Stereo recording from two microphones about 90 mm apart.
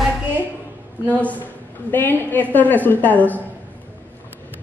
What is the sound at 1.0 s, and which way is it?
A man's voice, 15° left (ahead or behind).